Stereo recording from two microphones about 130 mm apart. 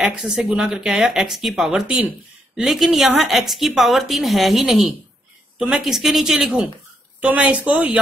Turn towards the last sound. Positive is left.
turn(degrees=-10)  # may be behind; listen again after turning